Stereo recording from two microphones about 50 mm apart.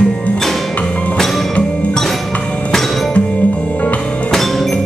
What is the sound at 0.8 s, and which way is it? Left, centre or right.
Music, left.